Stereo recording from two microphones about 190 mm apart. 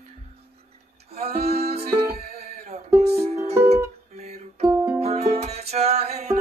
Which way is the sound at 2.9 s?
35° right (ahead or behind).